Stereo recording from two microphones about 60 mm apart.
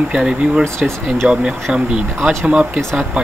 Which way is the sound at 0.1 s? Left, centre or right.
Centre.